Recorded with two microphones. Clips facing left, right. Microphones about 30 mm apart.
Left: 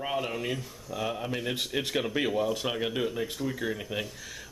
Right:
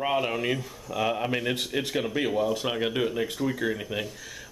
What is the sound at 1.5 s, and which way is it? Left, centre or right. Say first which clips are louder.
Speech: right 1 dB; centre.